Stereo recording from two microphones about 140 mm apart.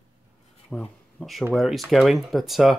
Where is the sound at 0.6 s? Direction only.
5° left (ahead or behind).